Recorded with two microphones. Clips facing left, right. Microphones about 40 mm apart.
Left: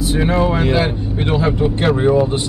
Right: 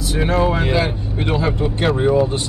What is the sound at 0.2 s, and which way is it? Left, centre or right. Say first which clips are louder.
Speech: even; centre.